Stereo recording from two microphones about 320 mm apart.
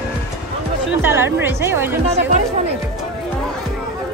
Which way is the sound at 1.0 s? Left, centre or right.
Centre.